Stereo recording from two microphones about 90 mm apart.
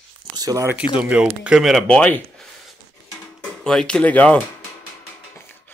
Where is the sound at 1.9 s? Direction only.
15° left (ahead or behind).